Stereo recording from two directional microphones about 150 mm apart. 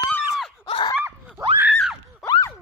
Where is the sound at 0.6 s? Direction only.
35° left (ahead or behind).